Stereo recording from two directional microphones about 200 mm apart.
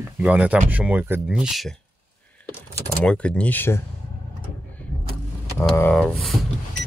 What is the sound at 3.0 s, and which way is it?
Speech, 5° left (ahead or behind).